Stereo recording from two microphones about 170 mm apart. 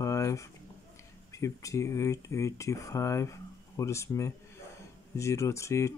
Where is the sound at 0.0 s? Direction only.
20° left (ahead or behind).